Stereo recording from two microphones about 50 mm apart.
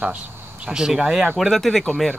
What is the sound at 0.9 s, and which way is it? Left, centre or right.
Speech, centre.